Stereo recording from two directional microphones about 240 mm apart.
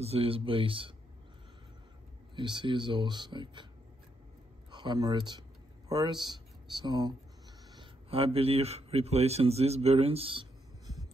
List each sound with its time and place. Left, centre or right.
0.0 s speech: right
2.3 s speech: centre
4.6 s a man's voice: centre